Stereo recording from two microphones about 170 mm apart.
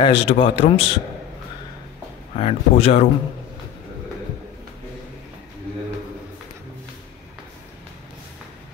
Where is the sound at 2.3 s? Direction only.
35° left (ahead or behind).